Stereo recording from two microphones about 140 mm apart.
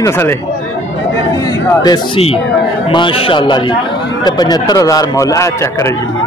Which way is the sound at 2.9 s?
35° left (ahead or behind).